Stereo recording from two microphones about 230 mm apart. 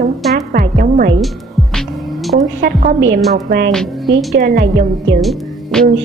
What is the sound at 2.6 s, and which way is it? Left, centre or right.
Speech, right.